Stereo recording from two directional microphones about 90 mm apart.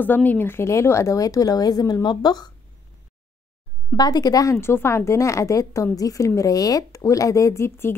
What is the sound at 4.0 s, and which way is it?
Speech, 45° left (ahead or behind).